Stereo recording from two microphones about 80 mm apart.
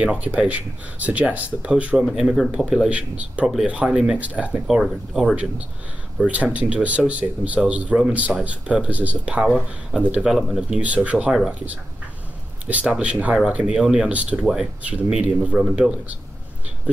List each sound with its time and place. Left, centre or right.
0.0 s speech: centre
4.6 s speech: centre
12.8 s speech: centre